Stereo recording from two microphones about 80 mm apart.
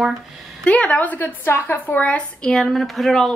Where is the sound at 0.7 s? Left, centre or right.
Centre.